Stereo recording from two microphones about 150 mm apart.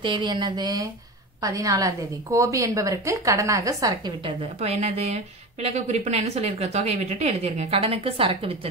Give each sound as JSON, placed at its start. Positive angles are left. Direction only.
{"t": 0.0, "sound": "a woman's voice", "side_deg": -30}
{"t": 4.2, "sound": "a woman's voice", "side_deg": -40}